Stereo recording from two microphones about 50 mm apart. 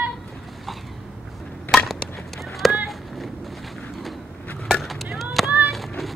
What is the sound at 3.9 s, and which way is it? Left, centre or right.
Vehicle, centre.